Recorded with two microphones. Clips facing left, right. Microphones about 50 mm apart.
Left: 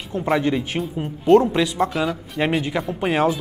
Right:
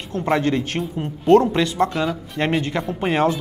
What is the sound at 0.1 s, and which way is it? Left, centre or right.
Speech, centre.